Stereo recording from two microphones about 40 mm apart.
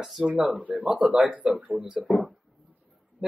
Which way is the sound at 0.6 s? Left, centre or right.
Right.